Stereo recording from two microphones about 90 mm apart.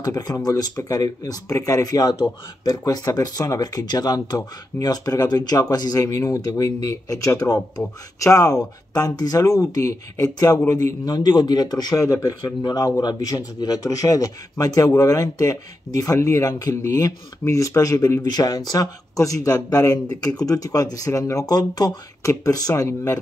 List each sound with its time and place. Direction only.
0.0 s speech: 45° left (ahead or behind)
10.7 s speech: 55° left (ahead or behind); by 18.2 s 40° left (ahead or behind)
18.2 s speech: 50° left (ahead or behind)